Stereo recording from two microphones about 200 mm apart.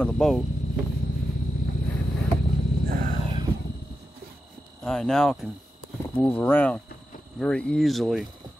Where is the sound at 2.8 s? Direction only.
45° right (ahead or behind).